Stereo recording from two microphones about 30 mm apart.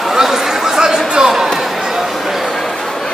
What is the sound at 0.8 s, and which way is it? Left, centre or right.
Chatter, right.